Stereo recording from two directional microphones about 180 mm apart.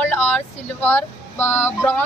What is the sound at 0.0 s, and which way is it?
A woman's voice, 10° left (ahead or behind).